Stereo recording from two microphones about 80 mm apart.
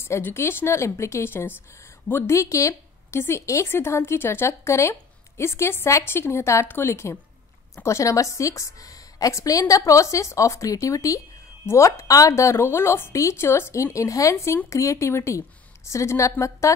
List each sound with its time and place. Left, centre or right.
0.0 s a woman's voice: left
2.3 s a woman's voice: left
13.9 s a woman's voice: left